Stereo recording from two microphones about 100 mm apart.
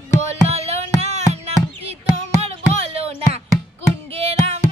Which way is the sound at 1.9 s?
90° right.